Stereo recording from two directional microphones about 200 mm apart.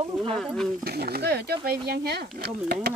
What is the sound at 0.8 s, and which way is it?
Speech, 50° right (ahead or behind).